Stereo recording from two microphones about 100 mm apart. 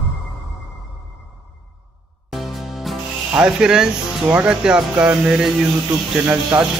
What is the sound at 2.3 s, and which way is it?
Music, centre (ahead or behind).